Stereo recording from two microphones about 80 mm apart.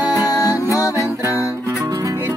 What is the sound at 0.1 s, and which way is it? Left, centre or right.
Music, left.